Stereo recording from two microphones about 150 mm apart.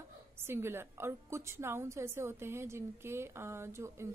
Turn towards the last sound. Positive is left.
turn(degrees=-20)  # may be behind; listen again after turning